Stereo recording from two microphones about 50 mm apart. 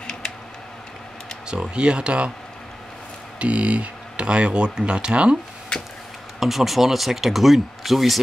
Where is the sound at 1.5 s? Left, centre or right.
Centre.